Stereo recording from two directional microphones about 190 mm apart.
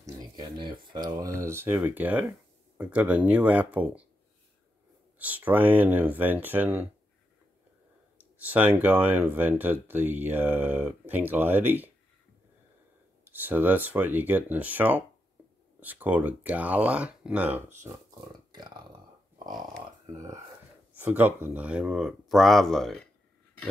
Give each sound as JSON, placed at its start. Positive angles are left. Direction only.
{"t": 0.0, "sound": "speech", "side_deg": -25}
{"t": 5.2, "sound": "speech", "side_deg": -10}
{"t": 8.2, "sound": "speech", "side_deg": -10}
{"t": 13.3, "sound": "speech", "side_deg": -10}
{"t": 18.5, "sound": "a sound", "side_deg": -20}
{"t": 21.0, "sound": "speech", "side_deg": -10}